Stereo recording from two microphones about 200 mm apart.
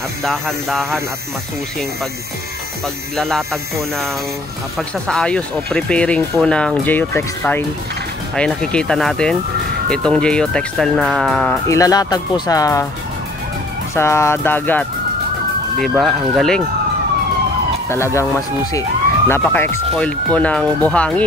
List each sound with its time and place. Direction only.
0.2 s speech: centre (ahead or behind)
3.2 s speech: centre (ahead or behind)
4.7 s speech: 5° left (ahead or behind)
11.7 s speech: 15° left (ahead or behind)
13.9 s speech: 15° left (ahead or behind)
15.9 s speech: centre (ahead or behind)
17.8 s speech: 15° left (ahead or behind)